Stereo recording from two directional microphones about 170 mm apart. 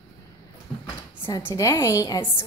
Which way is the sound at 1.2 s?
15° left (ahead or behind).